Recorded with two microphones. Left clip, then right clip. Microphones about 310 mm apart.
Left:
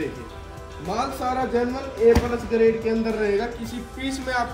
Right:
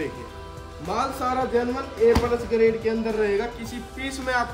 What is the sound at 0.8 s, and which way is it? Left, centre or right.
Speech, centre.